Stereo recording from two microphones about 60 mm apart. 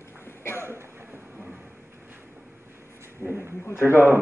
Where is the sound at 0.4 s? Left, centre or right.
Left.